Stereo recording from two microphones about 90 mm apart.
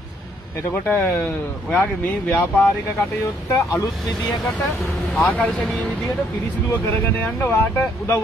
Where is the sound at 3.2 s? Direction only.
35° left (ahead or behind).